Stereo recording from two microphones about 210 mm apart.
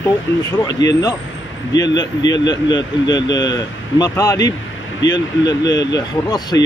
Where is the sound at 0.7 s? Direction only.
15° left (ahead or behind).